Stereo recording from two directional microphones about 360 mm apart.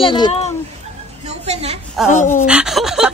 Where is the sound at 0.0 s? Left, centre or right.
Centre.